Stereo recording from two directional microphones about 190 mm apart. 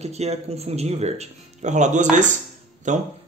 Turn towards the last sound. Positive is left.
turn(degrees=-40)  # may be behind; listen again after turning